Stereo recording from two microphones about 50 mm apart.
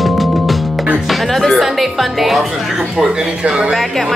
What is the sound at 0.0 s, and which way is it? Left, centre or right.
Music, centre.